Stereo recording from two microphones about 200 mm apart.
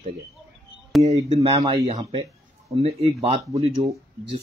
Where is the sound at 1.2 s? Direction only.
30° right (ahead or behind).